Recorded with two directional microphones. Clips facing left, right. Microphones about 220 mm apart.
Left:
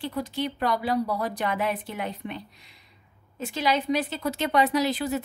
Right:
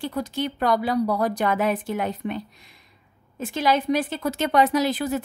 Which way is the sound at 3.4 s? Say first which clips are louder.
Right 3 dB; 50° right (ahead or behind).